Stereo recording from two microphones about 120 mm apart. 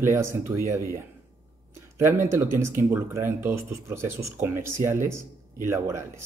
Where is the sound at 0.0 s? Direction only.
20° right (ahead or behind).